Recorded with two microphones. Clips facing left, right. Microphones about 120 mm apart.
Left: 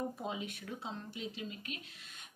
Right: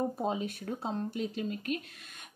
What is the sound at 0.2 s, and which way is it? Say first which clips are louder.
A woman's voice: right 8 dB; 40° right (ahead or behind).